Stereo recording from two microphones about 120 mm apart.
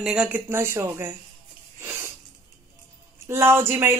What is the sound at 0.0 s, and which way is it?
Speech, 5° right (ahead or behind).